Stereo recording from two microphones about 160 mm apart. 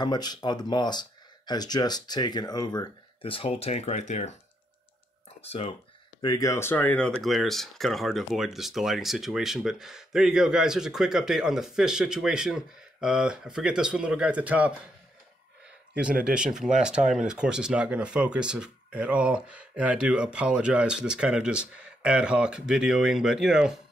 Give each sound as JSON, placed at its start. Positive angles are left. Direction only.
{"t": 0.0, "sound": "speech", "side_deg": 25}
{"t": 5.4, "sound": "speech", "side_deg": 35}
{"t": 6.2, "sound": "speech", "side_deg": 20}
{"t": 15.9, "sound": "speech", "side_deg": -5}